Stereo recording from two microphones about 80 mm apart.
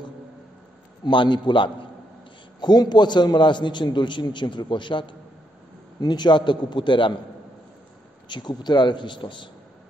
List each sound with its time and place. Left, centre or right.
1.0 s a man's voice: left
2.6 s a man's voice: left
5.9 s a man's voice: left
8.3 s a man's voice: left